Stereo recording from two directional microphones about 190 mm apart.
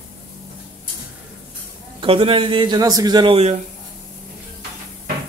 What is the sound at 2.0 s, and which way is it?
A man's voice, 30° right (ahead or behind).